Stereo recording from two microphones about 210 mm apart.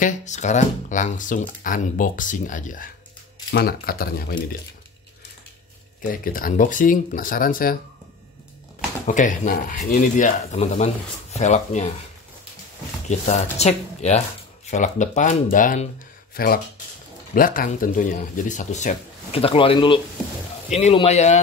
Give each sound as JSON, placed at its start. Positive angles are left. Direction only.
{"t": 0.0, "sound": "speech", "side_deg": 35}
{"t": 6.0, "sound": "speech", "side_deg": 40}
{"t": 9.0, "sound": "speech", "side_deg": 35}
{"t": 13.3, "sound": "speech", "side_deg": 30}